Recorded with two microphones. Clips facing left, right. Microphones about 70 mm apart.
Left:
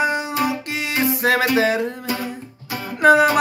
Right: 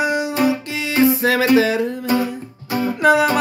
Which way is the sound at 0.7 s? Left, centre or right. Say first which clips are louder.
Right 5 dB; left.